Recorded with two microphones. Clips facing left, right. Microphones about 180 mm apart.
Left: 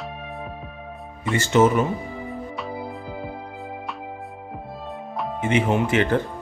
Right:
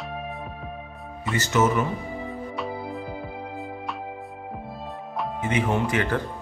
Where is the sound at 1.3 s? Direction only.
30° left (ahead or behind).